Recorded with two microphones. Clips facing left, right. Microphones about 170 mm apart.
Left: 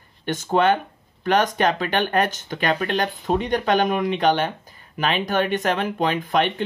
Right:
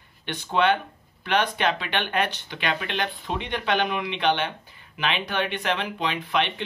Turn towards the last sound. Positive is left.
turn(degrees=45)  # may be behind; listen again after turning